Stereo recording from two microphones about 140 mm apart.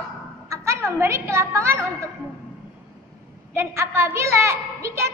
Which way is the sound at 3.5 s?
15° right (ahead or behind).